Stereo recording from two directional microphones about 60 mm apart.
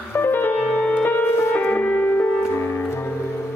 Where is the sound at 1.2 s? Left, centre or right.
Left.